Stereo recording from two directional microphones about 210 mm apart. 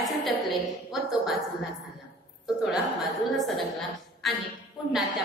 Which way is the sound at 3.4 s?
Centre (ahead or behind).